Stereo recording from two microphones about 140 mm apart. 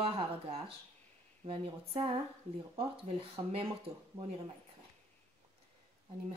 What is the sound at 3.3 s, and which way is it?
Speech, 40° right (ahead or behind).